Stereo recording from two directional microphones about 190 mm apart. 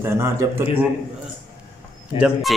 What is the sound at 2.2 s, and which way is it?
Speech, centre (ahead or behind).